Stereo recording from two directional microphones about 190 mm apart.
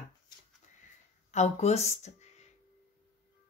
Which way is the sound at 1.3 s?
35° left (ahead or behind).